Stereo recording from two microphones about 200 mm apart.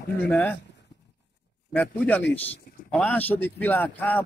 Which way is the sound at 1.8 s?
5° left (ahead or behind).